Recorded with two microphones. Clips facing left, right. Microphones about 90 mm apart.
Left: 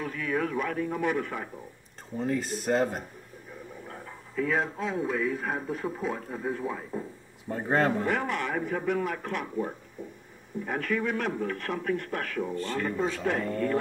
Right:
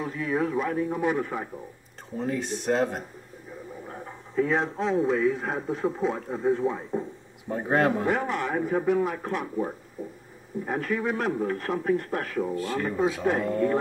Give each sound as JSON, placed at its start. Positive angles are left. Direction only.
{"t": 0.0, "sound": "a man's voice", "side_deg": -25}
{"t": 2.1, "sound": "speech", "side_deg": 0}
{"t": 4.4, "sound": "a man's voice", "side_deg": -30}
{"t": 7.4, "sound": "speech", "side_deg": -10}
{"t": 8.1, "sound": "a man's voice", "side_deg": -35}
{"t": 10.0, "sound": "a sound", "side_deg": 0}
{"t": 10.6, "sound": "a man's voice", "side_deg": -35}
{"t": 12.4, "sound": "speech", "side_deg": -10}